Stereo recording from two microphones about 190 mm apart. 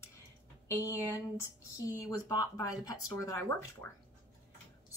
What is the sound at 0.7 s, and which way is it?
Speech, 15° left (ahead or behind).